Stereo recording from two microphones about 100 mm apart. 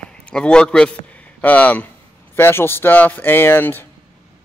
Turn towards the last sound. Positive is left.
turn(degrees=20)  # may be behind; listen again after turning